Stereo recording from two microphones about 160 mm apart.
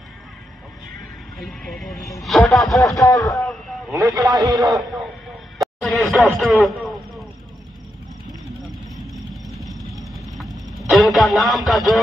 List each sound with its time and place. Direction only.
1.4 s speech: centre (ahead or behind)
3.0 s a man's voice: 20° left (ahead or behind)
3.9 s speech: 20° right (ahead or behind)
4.6 s a sound: centre (ahead or behind)
8.9 s vehicle: centre (ahead or behind)